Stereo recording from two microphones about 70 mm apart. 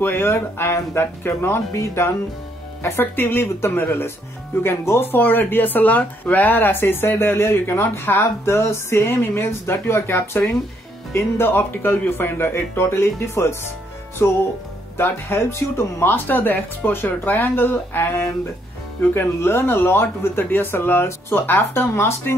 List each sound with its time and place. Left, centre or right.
0.0 s speech: left
2.8 s speech: left